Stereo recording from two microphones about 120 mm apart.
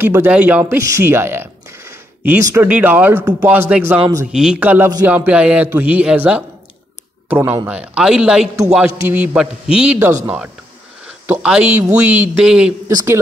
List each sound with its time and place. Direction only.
0.0 s a man's voice: 15° right (ahead or behind)
0.7 s a man's voice: 25° right (ahead or behind)
11.2 s a man's voice: 10° right (ahead or behind)